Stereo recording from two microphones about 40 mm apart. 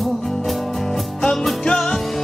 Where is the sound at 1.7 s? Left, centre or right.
Centre.